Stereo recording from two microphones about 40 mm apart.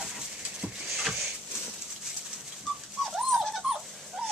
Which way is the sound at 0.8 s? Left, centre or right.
Centre.